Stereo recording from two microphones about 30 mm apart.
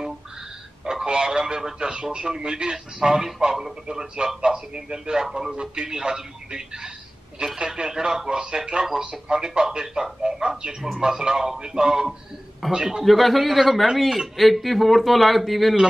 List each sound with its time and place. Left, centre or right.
1.0 s speech: right
8.3 s speech: right
10.3 s a sound: right
11.0 s speech: right
13.0 s speech: centre